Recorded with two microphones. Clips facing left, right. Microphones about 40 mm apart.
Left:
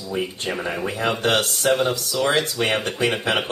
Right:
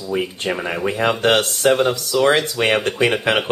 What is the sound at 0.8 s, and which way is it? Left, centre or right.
Speech, right.